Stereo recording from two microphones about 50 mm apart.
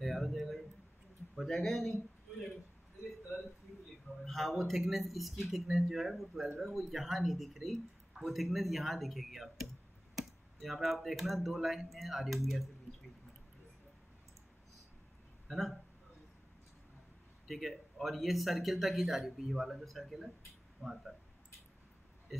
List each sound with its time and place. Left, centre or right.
0.0 s a sound: centre
1.5 s speech: centre
4.2 s speech: centre
15.4 s a sound: centre
17.5 s speech: centre
20.8 s speech: centre
22.3 s speech: centre